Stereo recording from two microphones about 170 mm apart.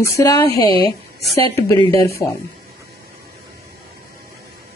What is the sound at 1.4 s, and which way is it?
Speech, 25° left (ahead or behind).